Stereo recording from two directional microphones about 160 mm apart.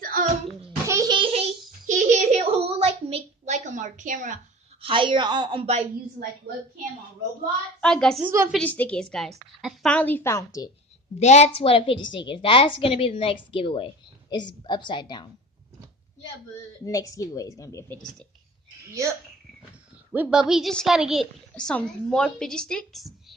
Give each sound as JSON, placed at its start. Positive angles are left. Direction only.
{"t": 0.0, "sound": "a sound", "side_deg": -60}
{"t": 0.8, "sound": "music", "side_deg": -20}
{"t": 1.9, "sound": "a sound", "side_deg": -50}
{"t": 4.8, "sound": "a woman's voice", "side_deg": -30}
{"t": 7.8, "sound": "a woman's voice", "side_deg": 5}
{"t": 9.9, "sound": "a woman's voice", "side_deg": 10}
{"t": 11.1, "sound": "a woman's voice", "side_deg": 45}
{"t": 16.5, "sound": "a woman's voice", "side_deg": 20}
{"t": 20.1, "sound": "a woman's voice", "side_deg": -5}